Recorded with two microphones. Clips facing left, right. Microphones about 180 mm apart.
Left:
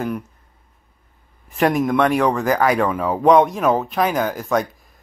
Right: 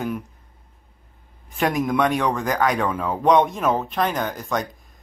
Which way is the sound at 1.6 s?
Centre (ahead or behind).